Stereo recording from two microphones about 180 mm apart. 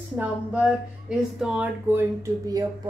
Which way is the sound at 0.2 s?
5° right (ahead or behind).